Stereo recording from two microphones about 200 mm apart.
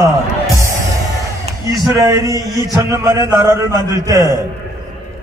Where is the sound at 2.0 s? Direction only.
15° right (ahead or behind).